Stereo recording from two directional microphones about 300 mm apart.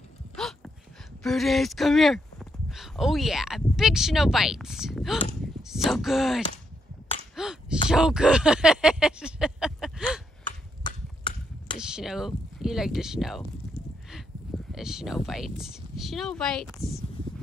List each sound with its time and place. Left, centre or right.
1.2 s speech: centre
10.8 s a sound: centre
11.8 s speech: centre
14.7 s speech: centre